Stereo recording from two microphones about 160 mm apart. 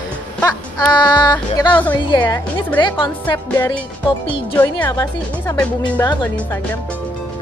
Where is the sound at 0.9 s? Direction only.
25° left (ahead or behind).